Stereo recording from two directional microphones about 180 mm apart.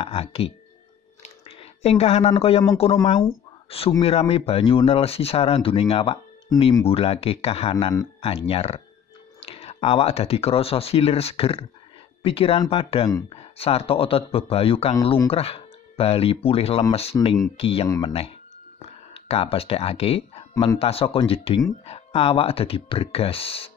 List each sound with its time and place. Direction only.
0.0 s speech: 30° left (ahead or behind)
1.2 s a sound: 35° left (ahead or behind)
2.8 s speech: 35° left (ahead or behind)
4.0 s speech: 35° left (ahead or behind)
17.8 s speech: 20° left (ahead or behind)
18.8 s speech: 35° left (ahead or behind)